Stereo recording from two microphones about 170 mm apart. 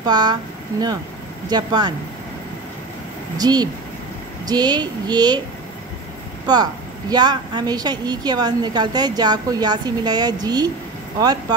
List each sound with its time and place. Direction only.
0.0 s a woman's voice: 25° right (ahead or behind)
3.3 s a woman's voice: 25° right (ahead or behind)
6.4 s a woman's voice: 25° right (ahead or behind)